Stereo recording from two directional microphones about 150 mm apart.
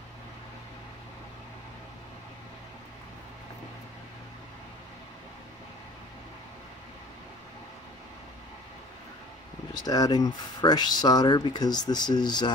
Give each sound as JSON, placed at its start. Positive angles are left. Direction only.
{"t": 9.8, "sound": "speech", "side_deg": 25}